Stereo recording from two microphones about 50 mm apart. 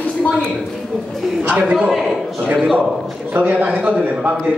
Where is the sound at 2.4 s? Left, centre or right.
Centre.